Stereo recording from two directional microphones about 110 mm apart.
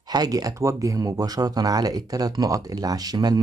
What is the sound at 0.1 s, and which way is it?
Speech, 35° right (ahead or behind).